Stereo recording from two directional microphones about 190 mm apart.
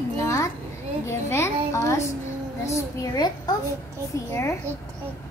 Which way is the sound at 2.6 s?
15° left (ahead or behind).